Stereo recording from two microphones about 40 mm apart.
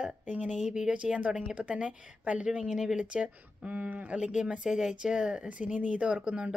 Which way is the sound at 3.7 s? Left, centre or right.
Right.